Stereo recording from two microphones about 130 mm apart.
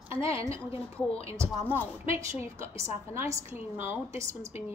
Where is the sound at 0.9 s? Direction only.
50° left (ahead or behind).